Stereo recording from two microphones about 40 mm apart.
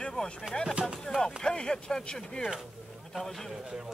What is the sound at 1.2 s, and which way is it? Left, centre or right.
Speech, centre.